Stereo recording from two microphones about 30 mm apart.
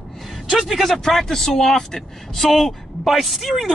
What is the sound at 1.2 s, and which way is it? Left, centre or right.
Speech, centre.